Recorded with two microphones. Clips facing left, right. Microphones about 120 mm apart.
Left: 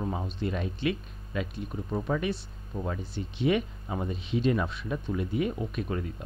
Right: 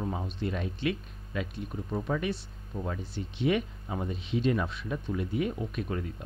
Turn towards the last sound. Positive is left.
turn(degrees=20)  # may be behind; listen again after turning